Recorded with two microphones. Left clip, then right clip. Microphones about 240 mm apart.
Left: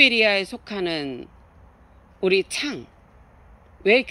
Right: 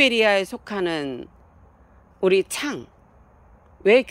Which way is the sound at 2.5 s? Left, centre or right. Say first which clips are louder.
Even; centre.